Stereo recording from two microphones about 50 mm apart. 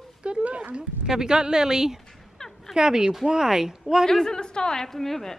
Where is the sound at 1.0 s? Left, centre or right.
Centre.